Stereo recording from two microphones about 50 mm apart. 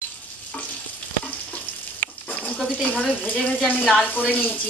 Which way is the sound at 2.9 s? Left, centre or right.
Centre.